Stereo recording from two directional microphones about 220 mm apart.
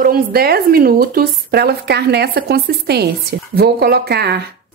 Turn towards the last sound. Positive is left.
turn(degrees=-45)  # may be behind; listen again after turning